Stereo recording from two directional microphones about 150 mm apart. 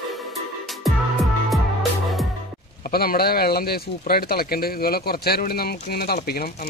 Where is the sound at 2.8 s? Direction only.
85° left.